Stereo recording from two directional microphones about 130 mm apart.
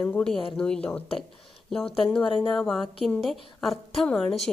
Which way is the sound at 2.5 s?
Centre (ahead or behind).